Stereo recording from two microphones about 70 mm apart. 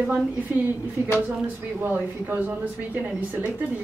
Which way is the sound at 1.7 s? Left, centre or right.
Right.